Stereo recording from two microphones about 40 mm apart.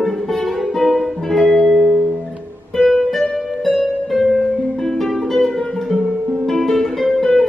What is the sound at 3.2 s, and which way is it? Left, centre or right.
Music, centre.